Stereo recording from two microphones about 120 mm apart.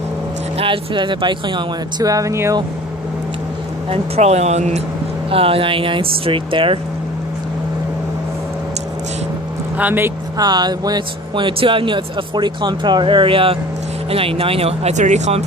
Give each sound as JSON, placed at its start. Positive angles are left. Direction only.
{"t": 0.6, "sound": "speech", "side_deg": -45}
{"t": 3.9, "sound": "speech", "side_deg": -65}
{"t": 5.3, "sound": "speech", "side_deg": -50}
{"t": 9.8, "sound": "speech", "side_deg": -15}
{"t": 10.3, "sound": "speech", "side_deg": -35}